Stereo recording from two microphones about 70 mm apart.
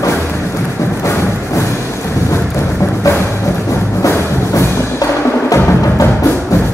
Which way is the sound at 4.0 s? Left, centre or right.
Left.